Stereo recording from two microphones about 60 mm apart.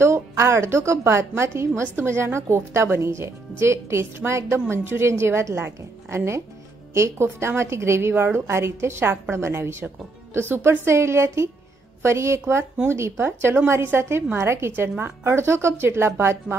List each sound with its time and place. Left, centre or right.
0.0 s a woman's voice: right